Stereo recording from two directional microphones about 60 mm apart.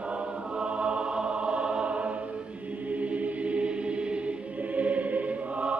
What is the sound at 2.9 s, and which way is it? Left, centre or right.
Music, right.